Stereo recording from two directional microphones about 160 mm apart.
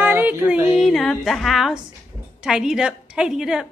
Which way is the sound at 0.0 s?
10° right (ahead or behind).